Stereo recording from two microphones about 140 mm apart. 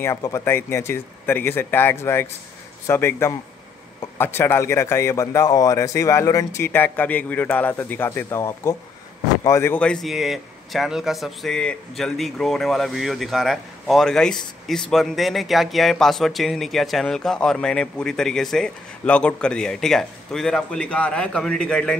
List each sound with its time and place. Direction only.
0.0 s a man's voice: 20° left (ahead or behind)